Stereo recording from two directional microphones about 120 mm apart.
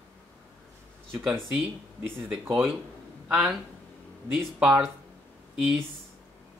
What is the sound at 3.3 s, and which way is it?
Speech, 10° right (ahead or behind).